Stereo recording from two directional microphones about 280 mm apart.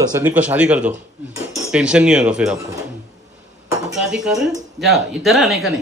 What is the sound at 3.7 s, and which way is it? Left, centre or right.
Dishes, centre.